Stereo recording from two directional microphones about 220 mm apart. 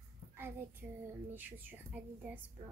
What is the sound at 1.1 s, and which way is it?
Speech, 10° right (ahead or behind).